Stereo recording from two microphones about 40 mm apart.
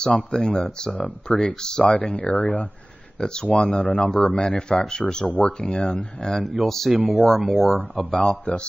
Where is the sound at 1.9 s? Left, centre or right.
Left; by 7.8 s centre.